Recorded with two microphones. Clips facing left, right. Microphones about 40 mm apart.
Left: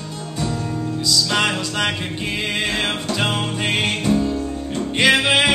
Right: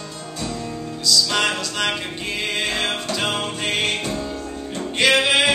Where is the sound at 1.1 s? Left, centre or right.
Centre.